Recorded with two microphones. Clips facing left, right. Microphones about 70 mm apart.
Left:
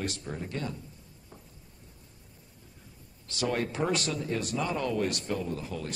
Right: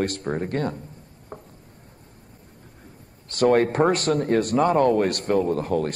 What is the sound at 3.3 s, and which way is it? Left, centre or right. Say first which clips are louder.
Speech: right 12 dB; right.